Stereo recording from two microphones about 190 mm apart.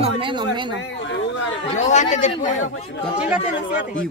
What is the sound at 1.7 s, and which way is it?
Speech, 40° left (ahead or behind).